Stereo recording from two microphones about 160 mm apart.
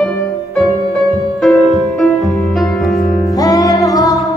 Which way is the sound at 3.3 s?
20° left (ahead or behind).